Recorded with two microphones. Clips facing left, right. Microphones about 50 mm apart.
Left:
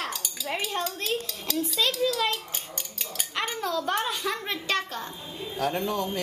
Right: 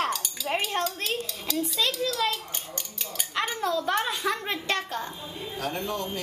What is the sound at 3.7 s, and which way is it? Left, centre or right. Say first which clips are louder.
A woman's voice: even; centre.